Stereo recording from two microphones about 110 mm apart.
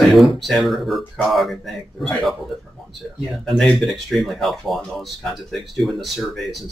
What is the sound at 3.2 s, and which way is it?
Speech, centre (ahead or behind).